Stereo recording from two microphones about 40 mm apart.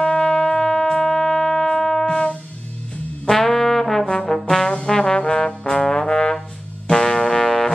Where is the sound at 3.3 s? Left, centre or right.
Centre.